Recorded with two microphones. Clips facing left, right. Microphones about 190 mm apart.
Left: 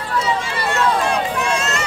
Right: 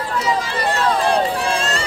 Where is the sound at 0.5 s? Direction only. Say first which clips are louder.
Left 2 dB; 30° right (ahead or behind).